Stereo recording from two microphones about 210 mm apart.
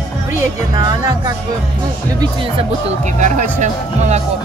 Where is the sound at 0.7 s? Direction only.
15° right (ahead or behind).